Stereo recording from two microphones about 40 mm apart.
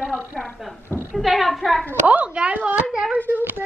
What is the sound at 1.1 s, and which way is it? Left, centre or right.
Speech, centre.